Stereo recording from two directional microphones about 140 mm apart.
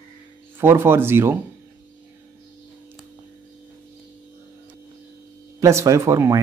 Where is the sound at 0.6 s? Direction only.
15° right (ahead or behind).